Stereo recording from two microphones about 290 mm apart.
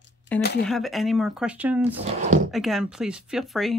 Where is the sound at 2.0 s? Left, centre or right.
Right.